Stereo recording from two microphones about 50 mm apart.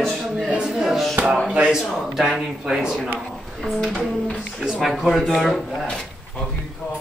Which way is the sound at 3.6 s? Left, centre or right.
Centre.